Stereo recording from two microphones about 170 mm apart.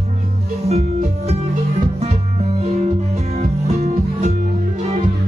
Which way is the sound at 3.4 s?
40° right (ahead or behind).